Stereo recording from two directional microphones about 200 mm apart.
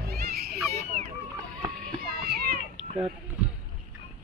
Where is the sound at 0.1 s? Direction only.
50° right (ahead or behind).